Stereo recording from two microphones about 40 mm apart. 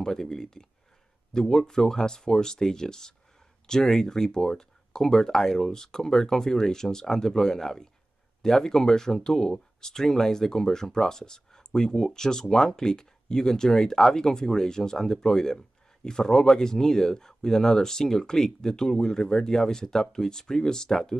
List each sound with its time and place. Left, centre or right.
0.0 s speech: centre